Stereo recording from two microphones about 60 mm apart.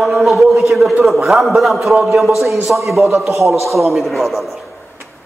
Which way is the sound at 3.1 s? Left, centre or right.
Right.